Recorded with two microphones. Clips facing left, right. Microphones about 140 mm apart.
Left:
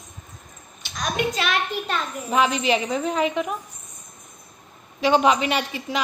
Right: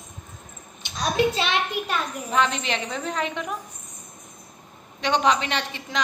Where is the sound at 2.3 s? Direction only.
10° left (ahead or behind).